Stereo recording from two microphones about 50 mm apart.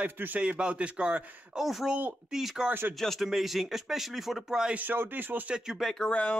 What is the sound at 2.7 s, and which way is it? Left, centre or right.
Speech, right.